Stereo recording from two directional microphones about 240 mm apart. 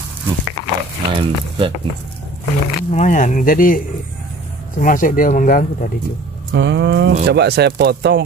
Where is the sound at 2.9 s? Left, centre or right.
Left.